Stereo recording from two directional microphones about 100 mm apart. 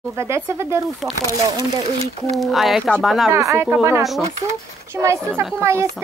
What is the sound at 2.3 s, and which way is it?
Speech, centre (ahead or behind).